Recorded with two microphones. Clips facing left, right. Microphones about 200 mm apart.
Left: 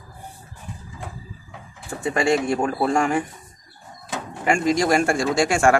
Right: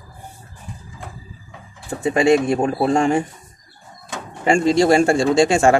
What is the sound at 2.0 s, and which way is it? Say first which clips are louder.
Speech: right 5 dB; 25° right (ahead or behind).